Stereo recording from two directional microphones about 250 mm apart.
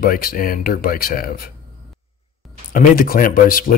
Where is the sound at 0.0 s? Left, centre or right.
Left.